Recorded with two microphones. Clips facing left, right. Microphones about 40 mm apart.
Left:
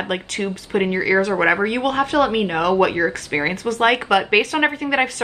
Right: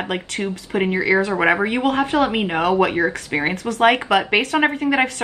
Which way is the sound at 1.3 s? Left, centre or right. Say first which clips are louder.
Even; centre.